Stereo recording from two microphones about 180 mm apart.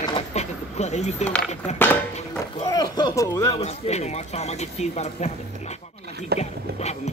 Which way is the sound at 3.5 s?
35° left (ahead or behind).